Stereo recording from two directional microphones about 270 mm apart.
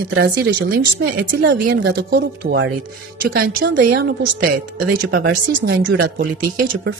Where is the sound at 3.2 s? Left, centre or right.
Right.